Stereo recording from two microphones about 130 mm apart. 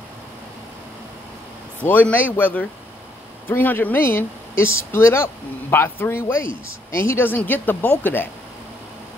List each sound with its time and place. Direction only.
1.8 s speech: 10° left (ahead or behind)